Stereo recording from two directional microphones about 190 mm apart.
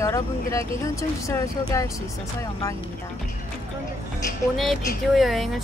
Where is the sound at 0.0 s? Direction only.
15° left (ahead or behind).